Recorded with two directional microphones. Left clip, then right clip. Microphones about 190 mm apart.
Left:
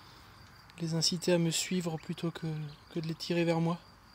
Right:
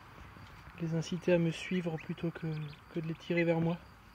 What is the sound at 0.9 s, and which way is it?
Speech, 30° left (ahead or behind).